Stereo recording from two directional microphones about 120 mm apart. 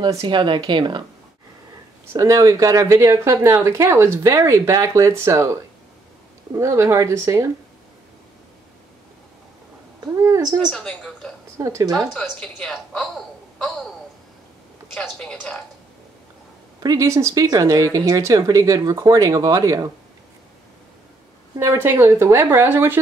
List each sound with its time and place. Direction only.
0.2 s speech: 40° right (ahead or behind)
2.1 s speech: 25° right (ahead or behind)
9.9 s a woman's voice: 25° right (ahead or behind)
10.7 s a woman's voice: 5° left (ahead or behind)
11.5 s speech: 25° right (ahead or behind)
11.9 s a woman's voice: 5° right (ahead or behind)
15.0 s speech: 10° left (ahead or behind)
16.8 s speech: 30° right (ahead or behind)
21.5 s speech: 25° right (ahead or behind)